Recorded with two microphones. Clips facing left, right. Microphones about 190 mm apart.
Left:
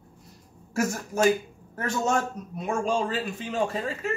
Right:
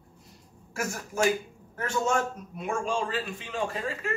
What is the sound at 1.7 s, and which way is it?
Speech, 40° left (ahead or behind).